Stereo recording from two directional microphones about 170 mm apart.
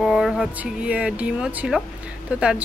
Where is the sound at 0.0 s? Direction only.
Centre (ahead or behind).